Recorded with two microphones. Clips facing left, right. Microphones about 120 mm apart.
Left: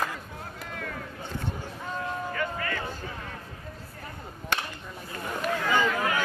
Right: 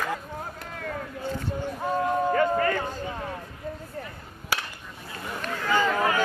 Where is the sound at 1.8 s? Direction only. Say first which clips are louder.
Right 9 dB; 45° right (ahead or behind).